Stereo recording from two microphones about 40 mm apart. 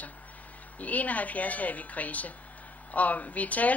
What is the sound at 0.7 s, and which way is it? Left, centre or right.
Speech, left.